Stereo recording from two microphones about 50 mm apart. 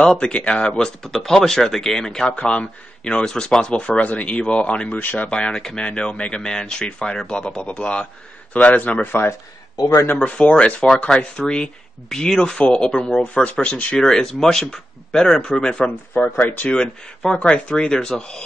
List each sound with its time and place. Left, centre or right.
0.0 s speech: left
2.2 s speech: left
4.9 s speech: left
5.3 s speech: centre
8.5 s speech: left
9.0 s speech: left
10.2 s speech: left
12.1 s speech: centre
13.3 s speech: left
13.9 s speech: centre
16.3 s speech: left
16.7 s speech: centre